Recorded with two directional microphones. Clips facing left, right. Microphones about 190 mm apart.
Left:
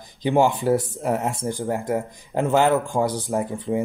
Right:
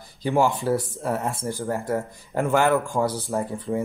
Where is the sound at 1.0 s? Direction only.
15° left (ahead or behind).